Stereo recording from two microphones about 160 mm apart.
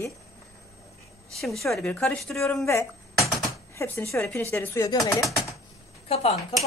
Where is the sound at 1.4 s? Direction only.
Centre (ahead or behind).